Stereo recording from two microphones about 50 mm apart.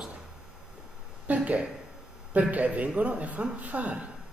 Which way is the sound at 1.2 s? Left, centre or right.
Right.